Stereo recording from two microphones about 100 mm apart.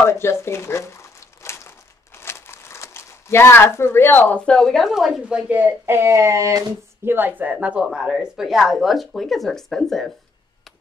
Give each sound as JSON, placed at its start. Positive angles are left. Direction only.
{"t": 0.0, "sound": "speech", "side_deg": 25}
{"t": 1.4, "sound": "crumpling", "side_deg": 30}
{"t": 2.1, "sound": "speech", "side_deg": 25}
{"t": 5.5, "sound": "speech", "side_deg": -20}
{"t": 7.1, "sound": "speech", "side_deg": -20}